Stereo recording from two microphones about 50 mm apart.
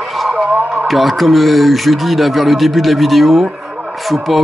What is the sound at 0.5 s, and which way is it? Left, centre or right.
Music, right.